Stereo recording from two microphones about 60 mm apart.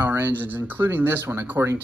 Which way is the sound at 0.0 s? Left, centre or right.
Right.